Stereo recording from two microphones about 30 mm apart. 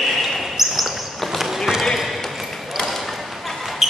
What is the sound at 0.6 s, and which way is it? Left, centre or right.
Basketball bounce, centre.